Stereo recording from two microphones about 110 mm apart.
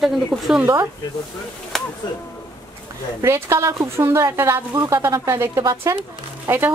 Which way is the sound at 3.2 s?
25° right (ahead or behind).